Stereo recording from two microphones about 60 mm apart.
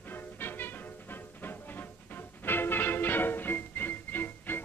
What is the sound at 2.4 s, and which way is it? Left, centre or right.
Music, left.